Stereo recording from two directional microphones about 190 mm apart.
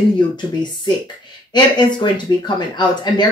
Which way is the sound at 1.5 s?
25° left (ahead or behind).